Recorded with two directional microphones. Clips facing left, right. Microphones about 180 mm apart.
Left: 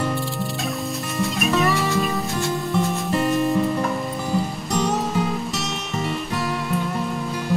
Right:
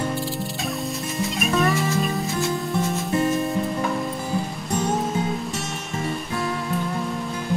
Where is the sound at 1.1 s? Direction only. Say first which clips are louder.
Left 2 dB; centre (ahead or behind).